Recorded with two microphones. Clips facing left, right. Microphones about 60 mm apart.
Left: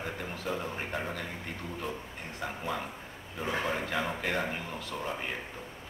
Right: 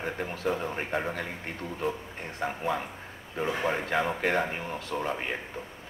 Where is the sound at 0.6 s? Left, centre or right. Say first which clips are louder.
Right 4 dB; right.